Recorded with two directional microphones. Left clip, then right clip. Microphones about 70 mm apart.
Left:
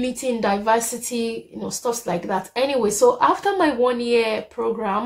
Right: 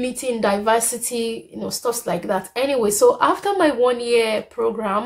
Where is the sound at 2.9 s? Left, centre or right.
Right.